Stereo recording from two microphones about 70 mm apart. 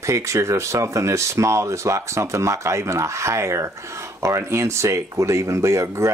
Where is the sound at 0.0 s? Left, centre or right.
Right.